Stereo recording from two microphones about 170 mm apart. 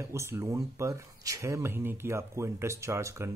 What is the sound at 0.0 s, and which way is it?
Speech, 15° right (ahead or behind).